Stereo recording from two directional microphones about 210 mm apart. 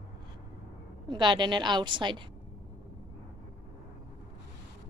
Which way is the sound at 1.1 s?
20° right (ahead or behind).